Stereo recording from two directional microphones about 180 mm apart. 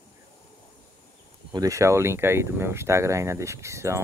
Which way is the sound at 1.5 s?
20° right (ahead or behind).